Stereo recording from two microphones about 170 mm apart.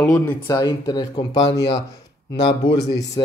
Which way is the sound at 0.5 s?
25° left (ahead or behind).